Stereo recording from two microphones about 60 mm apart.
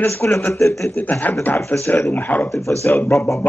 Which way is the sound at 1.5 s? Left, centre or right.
Left.